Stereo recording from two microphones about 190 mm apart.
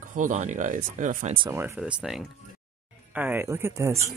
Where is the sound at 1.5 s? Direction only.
10° right (ahead or behind).